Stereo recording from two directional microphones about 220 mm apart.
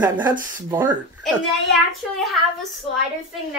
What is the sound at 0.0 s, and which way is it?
Speech, 20° right (ahead or behind).